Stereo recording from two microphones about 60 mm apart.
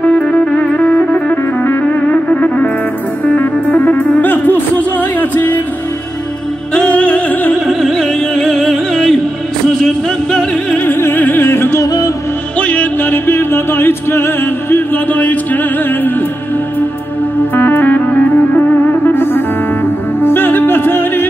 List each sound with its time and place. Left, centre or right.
0.0 s music: left
6.7 s music: centre
7.0 s music: left
7.6 s music: centre
10.3 s music: centre
10.8 s music: left
11.4 s music: left
11.8 s music: left
12.5 s music: left
17.6 s music: left